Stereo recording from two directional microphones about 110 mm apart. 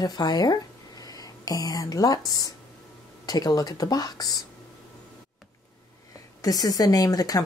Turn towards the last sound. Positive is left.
turn(degrees=35)  # may be behind; listen again after turning